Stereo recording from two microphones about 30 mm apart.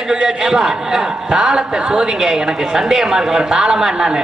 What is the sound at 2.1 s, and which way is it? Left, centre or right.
A man's voice, centre.